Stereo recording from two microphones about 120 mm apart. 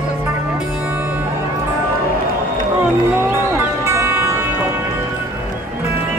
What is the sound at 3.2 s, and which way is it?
Music, 20° right (ahead or behind).